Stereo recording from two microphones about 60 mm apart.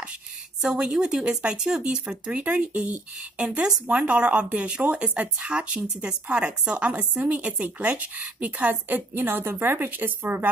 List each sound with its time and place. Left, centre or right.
0.6 s a woman's voice: centre; by 10.5 s right